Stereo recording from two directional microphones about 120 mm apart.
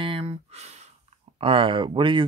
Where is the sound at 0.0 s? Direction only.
50° right (ahead or behind); by 0.8 s 65° right (ahead or behind).